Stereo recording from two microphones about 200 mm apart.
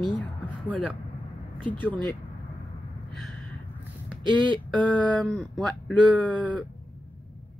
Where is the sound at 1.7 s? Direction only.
10° left (ahead or behind).